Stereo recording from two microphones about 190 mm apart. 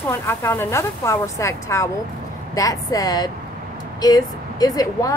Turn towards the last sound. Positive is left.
turn(degrees=20)  # may be behind; listen again after turning